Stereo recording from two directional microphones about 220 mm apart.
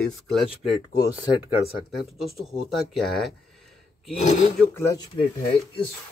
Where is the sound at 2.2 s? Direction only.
Centre (ahead or behind).